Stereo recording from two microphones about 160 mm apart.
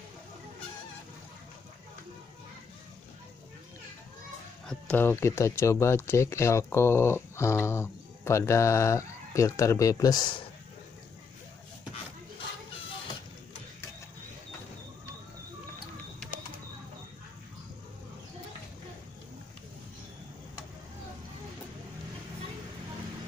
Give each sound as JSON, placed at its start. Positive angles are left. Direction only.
{"t": 4.6, "sound": "speech", "side_deg": 10}